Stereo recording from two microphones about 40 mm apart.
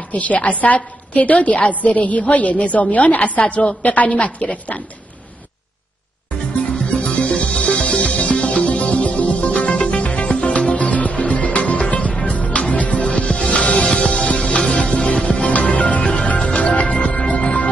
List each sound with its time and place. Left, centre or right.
0.1 s a woman's voice: left
6.8 s music: left
13.1 s music: left
14.3 s music: centre
16.0 s music: centre
16.5 s music: left